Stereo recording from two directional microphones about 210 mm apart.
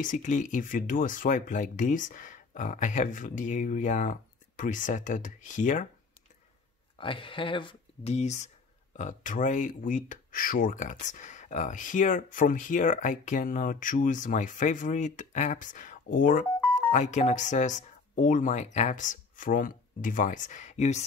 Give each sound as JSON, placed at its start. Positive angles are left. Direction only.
{"t": 0.0, "sound": "speech", "side_deg": 35}
{"t": 7.0, "sound": "speech", "side_deg": 25}